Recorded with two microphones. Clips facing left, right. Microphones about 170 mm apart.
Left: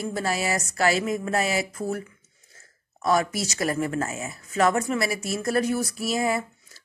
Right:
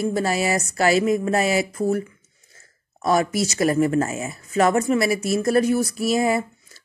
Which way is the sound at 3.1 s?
20° right (ahead or behind).